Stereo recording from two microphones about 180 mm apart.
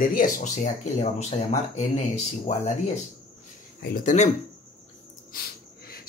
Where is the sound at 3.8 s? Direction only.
45° left (ahead or behind).